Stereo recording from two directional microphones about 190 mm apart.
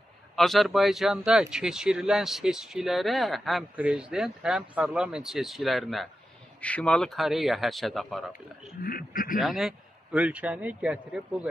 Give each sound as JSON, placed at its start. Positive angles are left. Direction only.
{"t": 0.4, "sound": "speech", "side_deg": 0}
{"t": 8.8, "sound": "speech", "side_deg": 50}
{"t": 9.4, "sound": "speech", "side_deg": 0}